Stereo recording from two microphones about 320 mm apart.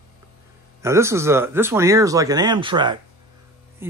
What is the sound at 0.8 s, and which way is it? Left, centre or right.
Speech, centre.